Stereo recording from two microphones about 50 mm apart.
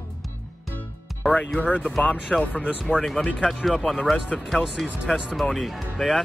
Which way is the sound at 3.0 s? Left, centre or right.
Centre.